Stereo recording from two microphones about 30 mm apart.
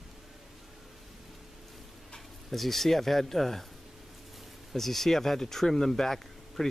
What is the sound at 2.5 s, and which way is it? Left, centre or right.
Speech, centre.